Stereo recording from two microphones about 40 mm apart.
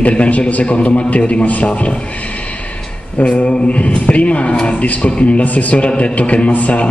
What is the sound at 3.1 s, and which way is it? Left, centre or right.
A man's voice, left.